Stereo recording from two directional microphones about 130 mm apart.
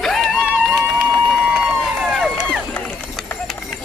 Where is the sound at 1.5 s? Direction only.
5° right (ahead or behind).